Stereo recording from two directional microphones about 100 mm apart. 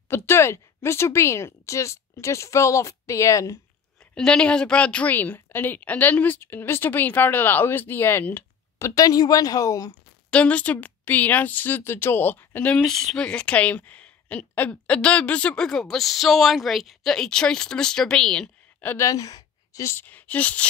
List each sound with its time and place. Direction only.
0.1 s a woman's voice: 25° left (ahead or behind)
4.0 s a woman's voice: 10° left (ahead or behind)
8.7 s a woman's voice: 35° left (ahead or behind)
10.3 s speech: 15° left (ahead or behind)
12.8 s speech: 5° left (ahead or behind)
18.9 s a woman's voice: 35° left (ahead or behind); by 20.6 s 15° left (ahead or behind)